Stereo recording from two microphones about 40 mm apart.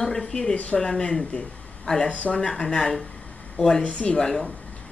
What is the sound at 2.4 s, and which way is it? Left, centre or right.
A woman's voice, centre.